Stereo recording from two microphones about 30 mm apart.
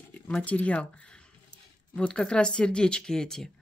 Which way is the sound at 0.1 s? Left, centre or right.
Left.